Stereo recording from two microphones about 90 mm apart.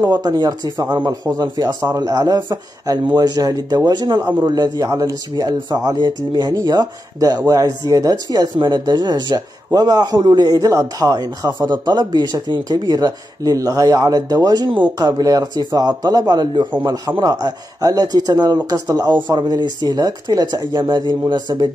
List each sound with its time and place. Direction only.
0.0 s a man's voice: 50° right (ahead or behind)
4.8 s speech: 35° right (ahead or behind)
5.3 s a man's voice: 50° right (ahead or behind)
8.5 s a man's voice: 55° right (ahead or behind)